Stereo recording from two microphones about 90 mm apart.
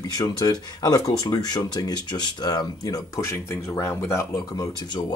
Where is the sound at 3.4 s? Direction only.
30° left (ahead or behind).